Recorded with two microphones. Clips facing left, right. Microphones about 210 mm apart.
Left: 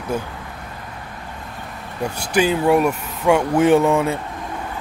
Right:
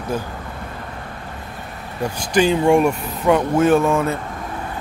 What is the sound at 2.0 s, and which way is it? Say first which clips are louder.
Speech: right 1 dB; 5° left (ahead or behind).